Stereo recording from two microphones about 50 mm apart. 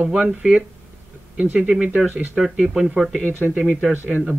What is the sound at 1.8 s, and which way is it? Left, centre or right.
Speech, right.